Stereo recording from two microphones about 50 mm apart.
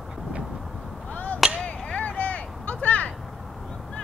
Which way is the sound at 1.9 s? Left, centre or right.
Left.